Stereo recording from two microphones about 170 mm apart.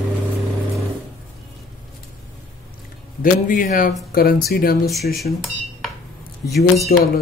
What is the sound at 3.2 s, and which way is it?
A man's voice, 50° left (ahead or behind).